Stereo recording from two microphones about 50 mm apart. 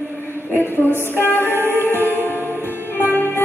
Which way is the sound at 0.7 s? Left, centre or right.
Left.